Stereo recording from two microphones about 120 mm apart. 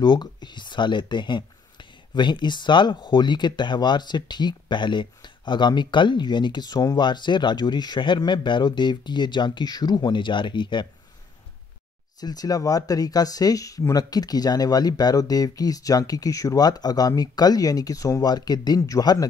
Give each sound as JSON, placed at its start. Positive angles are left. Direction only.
{"t": 0.0, "sound": "speech", "side_deg": 35}
{"t": 12.2, "sound": "speech", "side_deg": 35}